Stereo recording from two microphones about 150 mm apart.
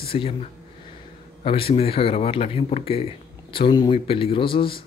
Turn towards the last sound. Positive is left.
turn(degrees=35)  # may be behind; listen again after turning